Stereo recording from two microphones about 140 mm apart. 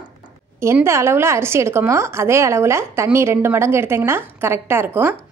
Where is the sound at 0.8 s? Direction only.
20° right (ahead or behind).